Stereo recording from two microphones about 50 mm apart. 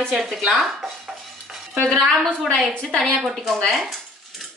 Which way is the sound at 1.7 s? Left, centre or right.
Centre.